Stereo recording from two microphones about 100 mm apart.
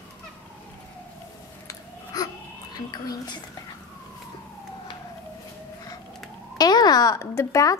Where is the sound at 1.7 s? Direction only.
35° left (ahead or behind).